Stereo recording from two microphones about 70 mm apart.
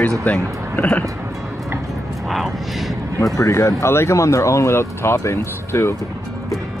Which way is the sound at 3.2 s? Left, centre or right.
Left.